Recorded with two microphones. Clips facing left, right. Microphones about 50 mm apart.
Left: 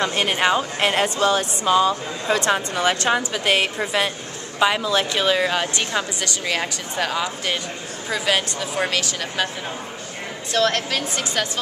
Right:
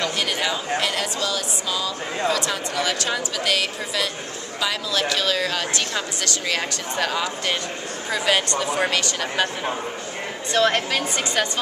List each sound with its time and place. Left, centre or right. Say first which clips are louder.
0.0 s a woman's voice: left 4 dB; left; by 9.5 s centre
10.5 s a woman's voice: right 1 dB; centre